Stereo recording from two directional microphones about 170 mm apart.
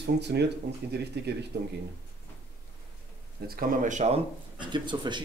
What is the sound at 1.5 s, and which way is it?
Speech, 90° right.